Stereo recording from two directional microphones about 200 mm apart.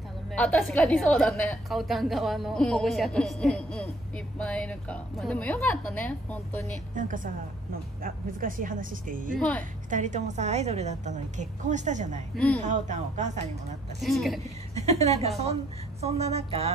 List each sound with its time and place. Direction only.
0.3 s a woman's voice: 5° left (ahead or behind)
7.0 s a woman's voice: 40° right (ahead or behind)
9.4 s a woman's voice: 5° left (ahead or behind)
9.8 s a woman's voice: 40° right (ahead or behind)
14.0 s a woman's voice: centre (ahead or behind)
14.8 s a woman's voice: 35° right (ahead or behind)